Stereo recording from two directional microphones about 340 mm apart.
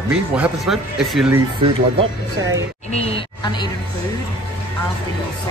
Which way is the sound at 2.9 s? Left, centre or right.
Centre.